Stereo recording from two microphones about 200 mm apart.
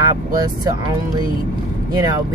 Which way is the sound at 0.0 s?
15° right (ahead or behind).